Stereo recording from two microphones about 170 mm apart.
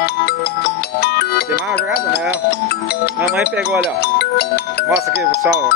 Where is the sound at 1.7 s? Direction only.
70° left (ahead or behind).